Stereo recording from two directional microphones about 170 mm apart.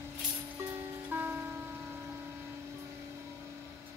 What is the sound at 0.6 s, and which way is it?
Music, 10° right (ahead or behind).